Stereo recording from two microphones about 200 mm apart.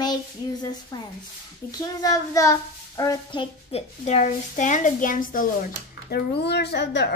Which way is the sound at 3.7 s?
35° left (ahead or behind).